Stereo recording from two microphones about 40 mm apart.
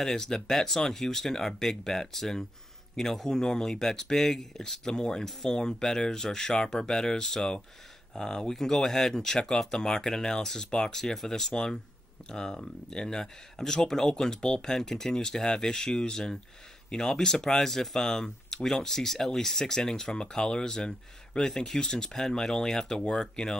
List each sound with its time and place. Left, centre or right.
0.0 s speech: centre